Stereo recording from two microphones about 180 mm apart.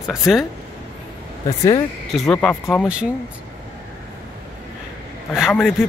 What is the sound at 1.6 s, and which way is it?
Speech, 25° left (ahead or behind).